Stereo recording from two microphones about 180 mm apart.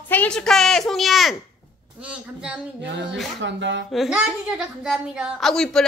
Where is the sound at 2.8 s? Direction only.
80° right.